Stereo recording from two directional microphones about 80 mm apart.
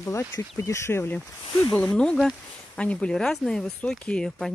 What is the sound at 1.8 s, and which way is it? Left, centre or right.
Speech, centre.